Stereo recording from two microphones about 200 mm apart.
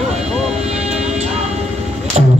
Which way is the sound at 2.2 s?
30° right (ahead or behind).